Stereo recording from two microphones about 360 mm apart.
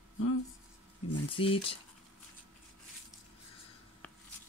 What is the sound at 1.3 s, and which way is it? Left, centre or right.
Speech, centre.